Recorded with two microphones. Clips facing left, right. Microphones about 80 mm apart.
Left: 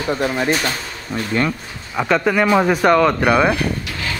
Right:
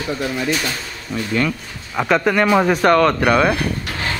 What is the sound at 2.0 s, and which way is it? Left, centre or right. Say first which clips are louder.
Speech: even; centre.